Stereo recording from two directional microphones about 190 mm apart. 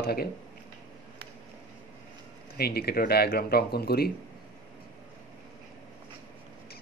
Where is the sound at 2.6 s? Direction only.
55° left (ahead or behind).